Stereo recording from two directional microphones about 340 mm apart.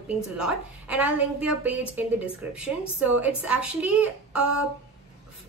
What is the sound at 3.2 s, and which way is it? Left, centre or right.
Speech, centre.